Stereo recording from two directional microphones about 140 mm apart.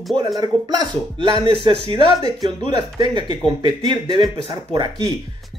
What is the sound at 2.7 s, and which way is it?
Speech, 35° right (ahead or behind).